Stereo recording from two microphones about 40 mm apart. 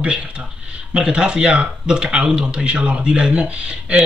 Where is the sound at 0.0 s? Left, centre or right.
Right.